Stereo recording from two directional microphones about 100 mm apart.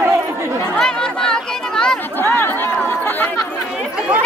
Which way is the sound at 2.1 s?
20° left (ahead or behind).